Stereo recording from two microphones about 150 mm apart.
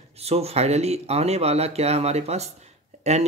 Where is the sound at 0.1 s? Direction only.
45° right (ahead or behind).